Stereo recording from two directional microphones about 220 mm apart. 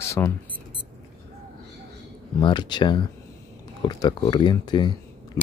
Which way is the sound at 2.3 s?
20° left (ahead or behind).